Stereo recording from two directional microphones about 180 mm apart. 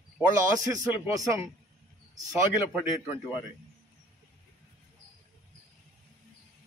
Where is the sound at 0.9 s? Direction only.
15° right (ahead or behind).